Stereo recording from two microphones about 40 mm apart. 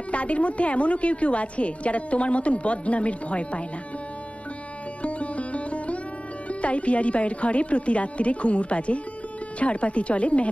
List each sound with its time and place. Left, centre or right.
0.1 s a woman's voice: left
5.0 s music: left
6.6 s a woman's voice: left